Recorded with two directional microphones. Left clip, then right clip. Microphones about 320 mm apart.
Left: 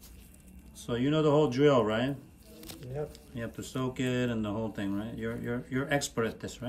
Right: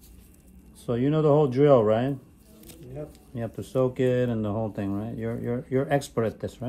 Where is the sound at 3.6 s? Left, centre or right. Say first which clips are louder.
Right 11 dB; centre.